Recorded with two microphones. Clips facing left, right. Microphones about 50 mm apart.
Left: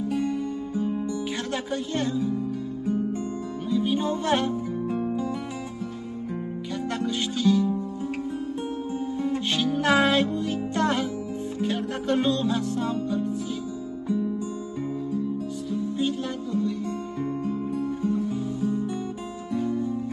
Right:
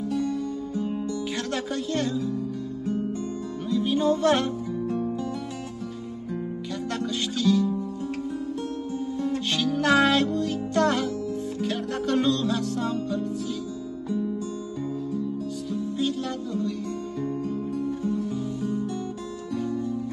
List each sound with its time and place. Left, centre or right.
0.1 s music: left
2.0 s speech: left
3.7 s music: left
7.0 s music: left
9.2 s music: left
15.7 s music: left
19.5 s music: left